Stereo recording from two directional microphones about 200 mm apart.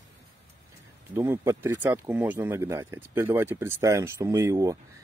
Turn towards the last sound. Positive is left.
turn(degrees=-15)  # may be behind; listen again after turning